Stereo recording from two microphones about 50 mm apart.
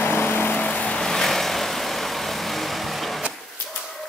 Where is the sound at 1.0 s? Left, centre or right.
Centre.